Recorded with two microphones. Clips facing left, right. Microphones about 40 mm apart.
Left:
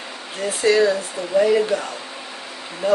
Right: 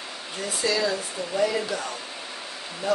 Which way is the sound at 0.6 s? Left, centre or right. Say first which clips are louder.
Left 9 dB; left.